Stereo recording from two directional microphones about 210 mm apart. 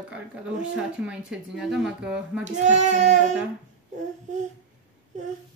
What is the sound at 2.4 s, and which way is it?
Child singing, 35° right (ahead or behind).